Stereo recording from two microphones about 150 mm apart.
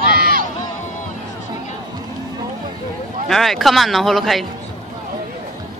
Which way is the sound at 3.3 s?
Centre (ahead or behind).